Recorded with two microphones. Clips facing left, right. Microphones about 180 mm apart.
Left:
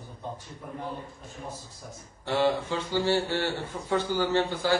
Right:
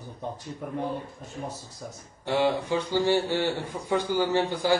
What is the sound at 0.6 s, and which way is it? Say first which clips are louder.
Speech: right 6 dB; 70° right (ahead or behind).